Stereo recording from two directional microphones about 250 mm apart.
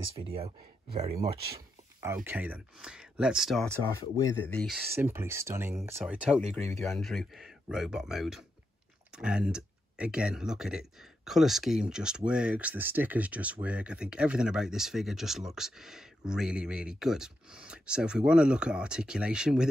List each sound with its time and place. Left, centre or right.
0.2 s speech: right
2.0 s speech: centre